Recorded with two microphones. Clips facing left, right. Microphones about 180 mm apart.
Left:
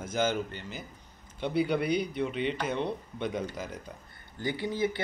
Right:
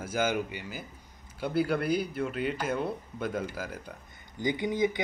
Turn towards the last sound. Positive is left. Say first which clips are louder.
# right 2 dB
turn(degrees=-15)  # may be behind; listen again after turning